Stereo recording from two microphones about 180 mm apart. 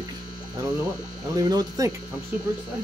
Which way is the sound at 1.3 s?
20° right (ahead or behind).